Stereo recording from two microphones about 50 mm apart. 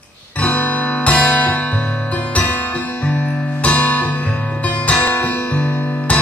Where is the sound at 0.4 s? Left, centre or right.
Left.